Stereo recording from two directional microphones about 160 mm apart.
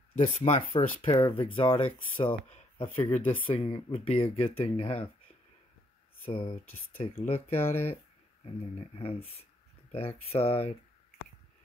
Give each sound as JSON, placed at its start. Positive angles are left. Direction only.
{"t": 0.2, "sound": "speech", "side_deg": 40}
{"t": 6.2, "sound": "speech", "side_deg": 35}
{"t": 8.7, "sound": "speech", "side_deg": 40}